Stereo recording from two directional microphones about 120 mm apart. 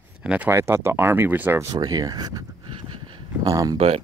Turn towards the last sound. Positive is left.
turn(degrees=-30)  # may be behind; listen again after turning